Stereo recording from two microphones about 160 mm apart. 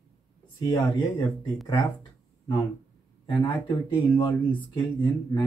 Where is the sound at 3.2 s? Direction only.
30° left (ahead or behind).